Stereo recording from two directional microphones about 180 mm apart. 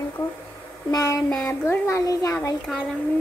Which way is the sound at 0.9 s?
15° left (ahead or behind).